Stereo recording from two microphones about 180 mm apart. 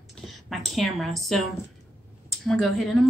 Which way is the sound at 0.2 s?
Centre (ahead or behind).